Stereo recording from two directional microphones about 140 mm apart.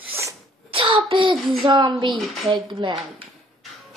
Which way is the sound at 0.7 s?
40° right (ahead or behind).